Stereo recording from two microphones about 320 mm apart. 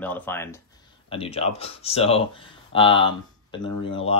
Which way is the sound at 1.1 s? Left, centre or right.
Centre.